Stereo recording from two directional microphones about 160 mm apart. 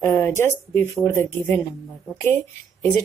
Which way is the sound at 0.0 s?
15° left (ahead or behind).